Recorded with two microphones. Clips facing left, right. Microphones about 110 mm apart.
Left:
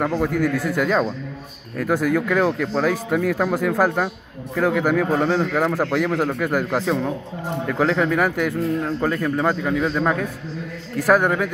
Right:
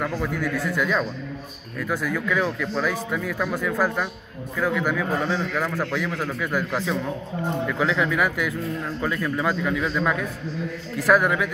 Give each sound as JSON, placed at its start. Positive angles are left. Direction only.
{"t": 0.2, "sound": "a man's voice", "side_deg": 55}